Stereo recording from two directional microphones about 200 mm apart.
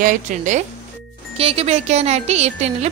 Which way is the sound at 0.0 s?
40° right (ahead or behind).